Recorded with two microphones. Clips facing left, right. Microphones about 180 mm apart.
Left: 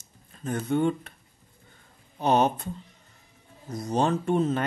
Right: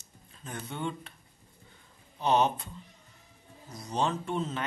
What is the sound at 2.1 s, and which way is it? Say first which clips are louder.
Speech: left 3 dB; 50° left (ahead or behind).